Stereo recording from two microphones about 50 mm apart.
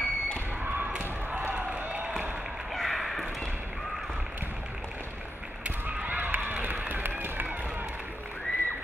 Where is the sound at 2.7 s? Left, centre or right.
Centre.